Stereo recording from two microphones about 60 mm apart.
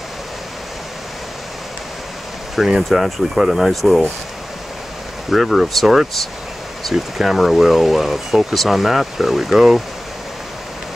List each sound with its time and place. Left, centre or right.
2.7 s speech: centre
5.3 s speech: centre